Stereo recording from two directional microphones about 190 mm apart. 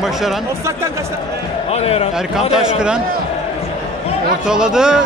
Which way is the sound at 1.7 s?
30° left (ahead or behind).